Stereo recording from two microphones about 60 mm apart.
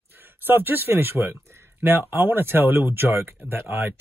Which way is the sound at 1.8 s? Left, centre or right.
Right.